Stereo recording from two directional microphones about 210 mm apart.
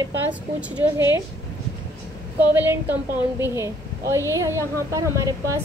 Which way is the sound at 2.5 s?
10° right (ahead or behind).